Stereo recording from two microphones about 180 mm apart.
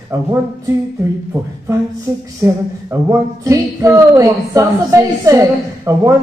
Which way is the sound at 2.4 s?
15° right (ahead or behind).